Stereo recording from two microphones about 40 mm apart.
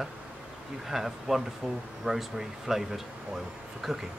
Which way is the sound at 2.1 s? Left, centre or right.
Right.